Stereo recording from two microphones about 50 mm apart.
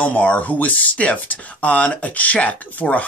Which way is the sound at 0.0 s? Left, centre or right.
Left.